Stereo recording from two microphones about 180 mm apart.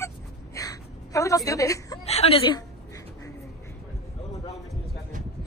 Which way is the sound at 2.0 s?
35° left (ahead or behind).